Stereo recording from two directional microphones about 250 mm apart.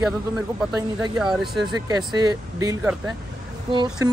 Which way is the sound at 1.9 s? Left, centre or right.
Centre.